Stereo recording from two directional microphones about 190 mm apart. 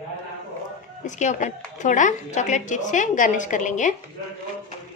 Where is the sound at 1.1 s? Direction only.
40° left (ahead or behind).